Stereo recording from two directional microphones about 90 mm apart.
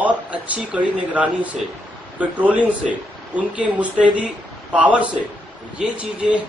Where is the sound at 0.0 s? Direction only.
15° right (ahead or behind).